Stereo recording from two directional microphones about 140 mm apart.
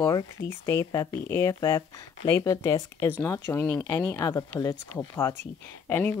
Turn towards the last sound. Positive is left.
turn(degrees=10)  # may be behind; listen again after turning